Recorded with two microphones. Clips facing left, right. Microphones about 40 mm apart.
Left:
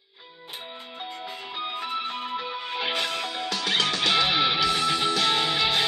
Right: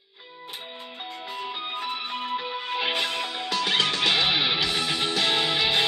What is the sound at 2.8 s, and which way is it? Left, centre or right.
Music, centre.